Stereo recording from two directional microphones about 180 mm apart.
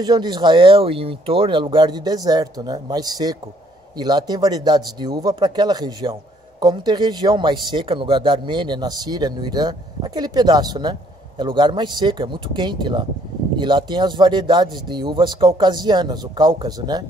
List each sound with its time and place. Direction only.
0.0 s speech: 25° right (ahead or behind)